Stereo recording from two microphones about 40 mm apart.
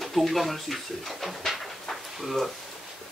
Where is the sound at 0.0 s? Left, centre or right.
Centre.